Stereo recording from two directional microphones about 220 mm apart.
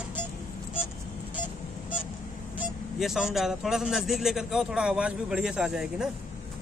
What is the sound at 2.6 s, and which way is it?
Speech, centre (ahead or behind).